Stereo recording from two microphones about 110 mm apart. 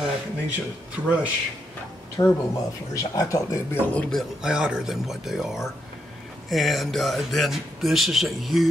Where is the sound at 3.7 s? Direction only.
15° left (ahead or behind).